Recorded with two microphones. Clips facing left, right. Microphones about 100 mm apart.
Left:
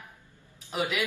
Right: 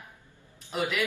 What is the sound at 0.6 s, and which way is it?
Speech, 10° left (ahead or behind).